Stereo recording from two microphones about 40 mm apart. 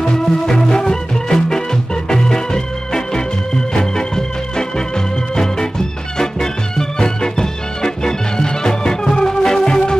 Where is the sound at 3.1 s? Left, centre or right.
Centre.